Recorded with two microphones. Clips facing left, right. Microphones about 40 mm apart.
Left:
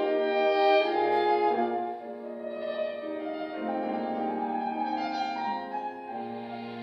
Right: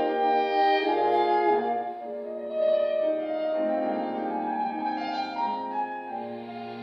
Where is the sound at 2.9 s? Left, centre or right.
Centre.